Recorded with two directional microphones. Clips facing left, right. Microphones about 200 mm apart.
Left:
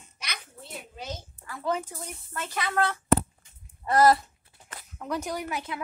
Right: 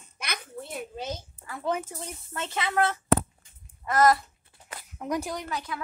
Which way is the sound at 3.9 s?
30° left (ahead or behind).